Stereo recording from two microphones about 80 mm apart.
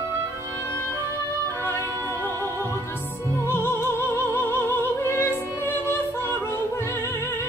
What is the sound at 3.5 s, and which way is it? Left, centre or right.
Music, left.